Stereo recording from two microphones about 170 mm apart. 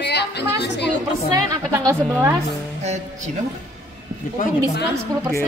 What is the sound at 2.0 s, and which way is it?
Speech, 5° left (ahead or behind).